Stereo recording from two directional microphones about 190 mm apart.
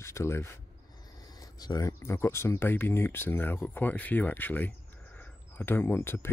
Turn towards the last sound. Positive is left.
turn(degrees=10)  # may be behind; listen again after turning